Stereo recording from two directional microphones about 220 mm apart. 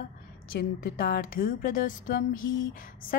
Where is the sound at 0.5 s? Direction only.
45° left (ahead or behind).